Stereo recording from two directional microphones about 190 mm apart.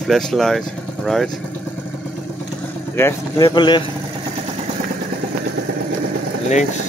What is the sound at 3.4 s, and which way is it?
Speech, 25° left (ahead or behind).